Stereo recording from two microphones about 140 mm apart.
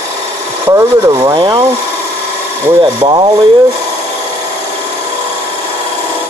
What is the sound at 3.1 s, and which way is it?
Speech, 25° right (ahead or behind).